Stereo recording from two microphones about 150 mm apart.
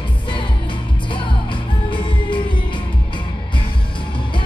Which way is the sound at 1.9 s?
35° left (ahead or behind).